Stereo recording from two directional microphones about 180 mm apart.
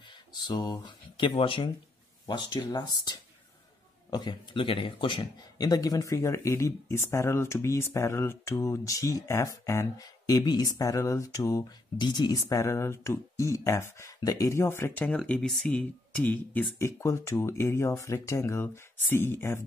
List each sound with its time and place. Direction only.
0.0 s speech: 25° left (ahead or behind)